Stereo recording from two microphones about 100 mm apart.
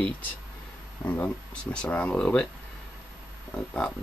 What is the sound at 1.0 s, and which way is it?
Speech, 15° left (ahead or behind).